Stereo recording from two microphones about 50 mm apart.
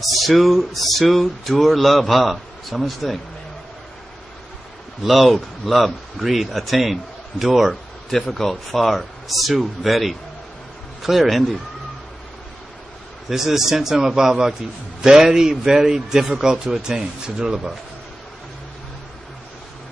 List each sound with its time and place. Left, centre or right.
0.0 s speech: centre
5.0 s speech: centre
13.3 s a man's voice: centre